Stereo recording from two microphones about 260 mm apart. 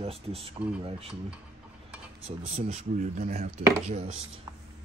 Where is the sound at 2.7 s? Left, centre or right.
Right.